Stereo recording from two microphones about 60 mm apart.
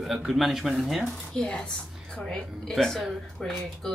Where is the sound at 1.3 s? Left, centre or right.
Centre.